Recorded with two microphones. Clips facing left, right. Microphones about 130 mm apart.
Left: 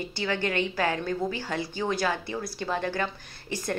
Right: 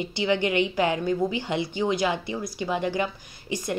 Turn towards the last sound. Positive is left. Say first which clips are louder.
# right 2 dB
turn(degrees=-15)  # may be behind; listen again after turning